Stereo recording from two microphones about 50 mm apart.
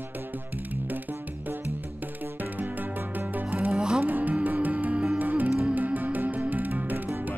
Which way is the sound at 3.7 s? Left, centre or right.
Centre.